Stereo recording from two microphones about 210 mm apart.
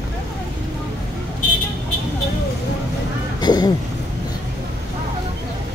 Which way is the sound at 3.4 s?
20° left (ahead or behind).